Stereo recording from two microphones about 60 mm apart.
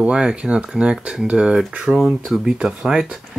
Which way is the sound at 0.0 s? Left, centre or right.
Centre.